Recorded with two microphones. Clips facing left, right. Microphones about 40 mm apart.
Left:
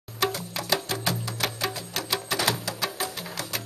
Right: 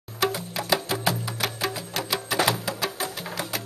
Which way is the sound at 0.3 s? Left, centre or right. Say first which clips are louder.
Right 2 dB; centre.